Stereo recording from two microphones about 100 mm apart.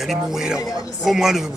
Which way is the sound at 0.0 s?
5° right (ahead or behind).